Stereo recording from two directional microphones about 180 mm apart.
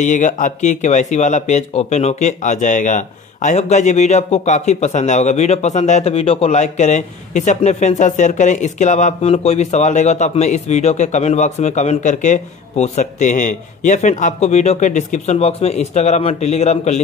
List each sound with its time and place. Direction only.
0.0 s speech: 45° left (ahead or behind)